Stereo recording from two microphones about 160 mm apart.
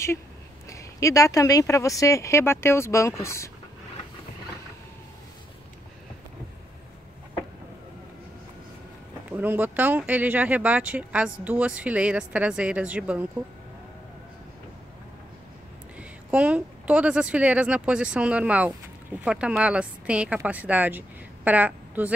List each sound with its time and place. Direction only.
0.7 s speech: 20° left (ahead or behind)
9.3 s speech: 10° right (ahead or behind)
16.0 s a woman's voice: 10° right (ahead or behind)